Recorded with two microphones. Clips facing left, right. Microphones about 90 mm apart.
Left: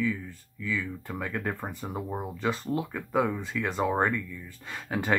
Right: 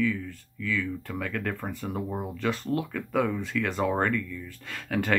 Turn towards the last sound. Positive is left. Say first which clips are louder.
# right 1 dB
turn(degrees=15)  # may be behind; listen again after turning